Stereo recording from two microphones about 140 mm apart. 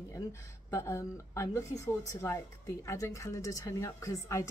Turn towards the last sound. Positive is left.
turn(degrees=20)  # may be behind; listen again after turning